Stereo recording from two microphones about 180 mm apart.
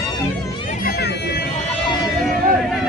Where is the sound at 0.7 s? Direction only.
55° left (ahead or behind).